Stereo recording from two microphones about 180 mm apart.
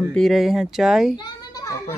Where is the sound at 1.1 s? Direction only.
20° left (ahead or behind).